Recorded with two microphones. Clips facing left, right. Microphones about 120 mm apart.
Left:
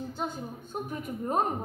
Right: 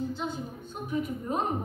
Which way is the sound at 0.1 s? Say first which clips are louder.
Right 1 dB; 45° left (ahead or behind).